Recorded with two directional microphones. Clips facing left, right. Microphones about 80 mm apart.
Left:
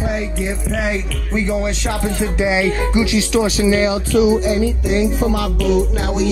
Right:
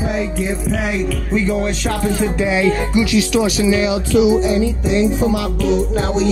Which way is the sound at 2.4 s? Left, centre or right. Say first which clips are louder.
Left 1 dB; centre.